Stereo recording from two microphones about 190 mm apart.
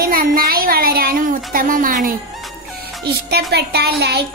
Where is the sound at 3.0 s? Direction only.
55° right (ahead or behind).